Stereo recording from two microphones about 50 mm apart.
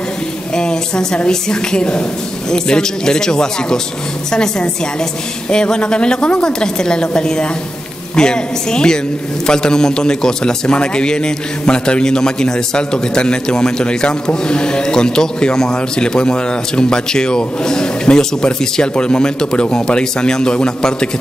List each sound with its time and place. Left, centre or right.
0.6 s a man's voice: centre